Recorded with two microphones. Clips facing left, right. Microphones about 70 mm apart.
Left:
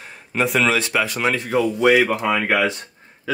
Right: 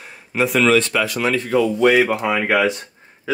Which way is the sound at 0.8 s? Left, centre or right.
Centre.